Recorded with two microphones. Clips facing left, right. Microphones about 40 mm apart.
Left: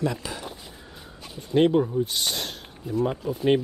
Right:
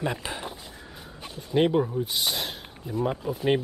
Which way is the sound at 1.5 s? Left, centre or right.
Centre.